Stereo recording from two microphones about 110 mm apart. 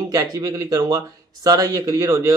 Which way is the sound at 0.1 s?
30° right (ahead or behind).